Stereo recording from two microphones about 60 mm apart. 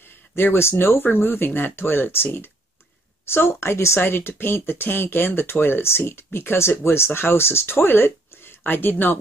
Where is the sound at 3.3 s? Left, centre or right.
Left.